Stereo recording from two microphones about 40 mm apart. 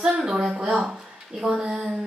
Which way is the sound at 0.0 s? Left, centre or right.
Centre.